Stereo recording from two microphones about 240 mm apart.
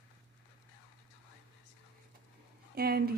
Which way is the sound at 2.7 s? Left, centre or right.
Right.